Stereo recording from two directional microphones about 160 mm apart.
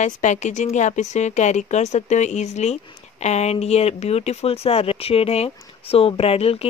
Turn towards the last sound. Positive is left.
turn(degrees=40)  # may be behind; listen again after turning